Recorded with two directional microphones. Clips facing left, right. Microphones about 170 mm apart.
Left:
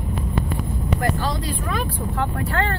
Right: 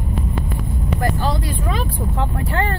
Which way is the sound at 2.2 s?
20° right (ahead or behind).